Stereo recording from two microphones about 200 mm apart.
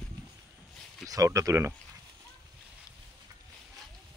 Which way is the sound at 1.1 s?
15° right (ahead or behind).